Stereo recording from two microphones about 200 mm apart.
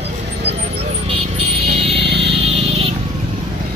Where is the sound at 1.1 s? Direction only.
30° right (ahead or behind).